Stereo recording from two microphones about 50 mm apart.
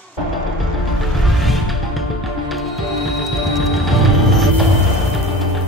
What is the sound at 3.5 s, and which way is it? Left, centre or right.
Music, centre.